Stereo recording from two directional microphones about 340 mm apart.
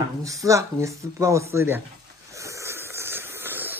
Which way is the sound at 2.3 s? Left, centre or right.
Centre.